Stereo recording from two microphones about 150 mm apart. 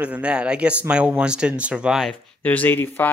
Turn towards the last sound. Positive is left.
turn(degrees=15)  # may be behind; listen again after turning